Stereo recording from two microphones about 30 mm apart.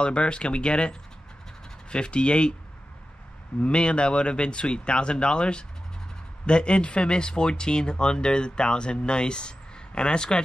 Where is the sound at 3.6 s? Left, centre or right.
Left.